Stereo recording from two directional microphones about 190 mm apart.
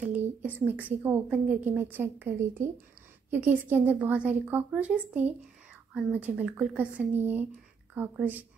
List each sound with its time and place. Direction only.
0.0 s a woman's voice: 10° right (ahead or behind)